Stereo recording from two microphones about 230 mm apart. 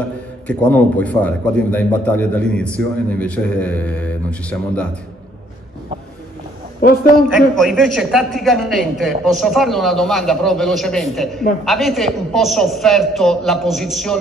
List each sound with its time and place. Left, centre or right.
0.5 s a man's voice: centre
6.8 s a woman's voice: left
7.3 s a man's voice: centre